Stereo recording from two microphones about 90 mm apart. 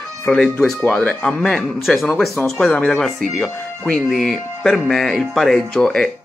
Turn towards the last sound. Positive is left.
turn(degrees=10)  # may be behind; listen again after turning